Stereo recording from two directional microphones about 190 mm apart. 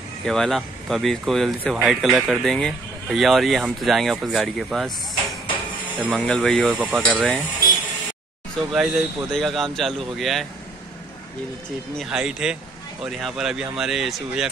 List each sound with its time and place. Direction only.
0.2 s speech: centre (ahead or behind)
6.0 s speech: centre (ahead or behind)
6.7 s speech: 5° right (ahead or behind)
7.0 s speech: 5° left (ahead or behind)
8.7 s speech: centre (ahead or behind)
12.0 s speech: 5° right (ahead or behind)